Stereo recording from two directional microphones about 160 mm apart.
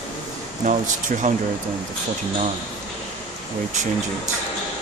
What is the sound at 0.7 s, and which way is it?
Speech, 50° right (ahead or behind).